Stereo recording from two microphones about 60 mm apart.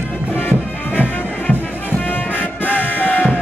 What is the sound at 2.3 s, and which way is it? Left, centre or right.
Music, left.